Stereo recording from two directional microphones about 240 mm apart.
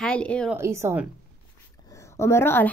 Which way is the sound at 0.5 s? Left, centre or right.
Centre.